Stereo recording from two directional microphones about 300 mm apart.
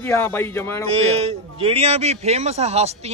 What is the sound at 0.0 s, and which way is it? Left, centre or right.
Speech, centre.